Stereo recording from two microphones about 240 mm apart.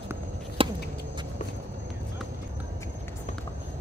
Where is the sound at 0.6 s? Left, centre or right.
Right.